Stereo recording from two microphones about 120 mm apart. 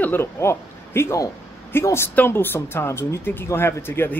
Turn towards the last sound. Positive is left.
turn(degrees=20)  # may be behind; listen again after turning